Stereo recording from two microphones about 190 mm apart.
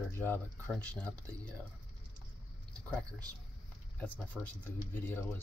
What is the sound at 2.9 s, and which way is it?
Speech, 5° left (ahead or behind).